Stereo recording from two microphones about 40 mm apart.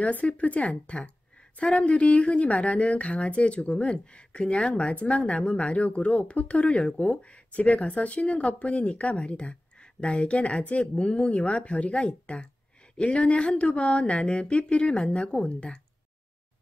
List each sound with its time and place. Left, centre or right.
0.0 s a woman's voice: left